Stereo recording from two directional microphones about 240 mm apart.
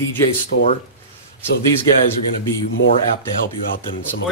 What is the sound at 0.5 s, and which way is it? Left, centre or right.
Speech, left.